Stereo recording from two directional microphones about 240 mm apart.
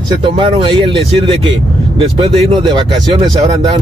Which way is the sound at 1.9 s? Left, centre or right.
Right.